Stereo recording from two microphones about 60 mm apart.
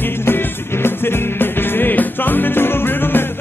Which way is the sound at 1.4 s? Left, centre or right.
Left.